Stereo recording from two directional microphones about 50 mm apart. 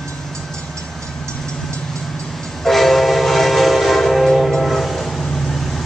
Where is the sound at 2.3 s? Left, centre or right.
Centre.